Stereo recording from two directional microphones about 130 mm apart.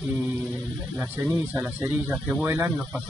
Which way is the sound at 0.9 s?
20° right (ahead or behind).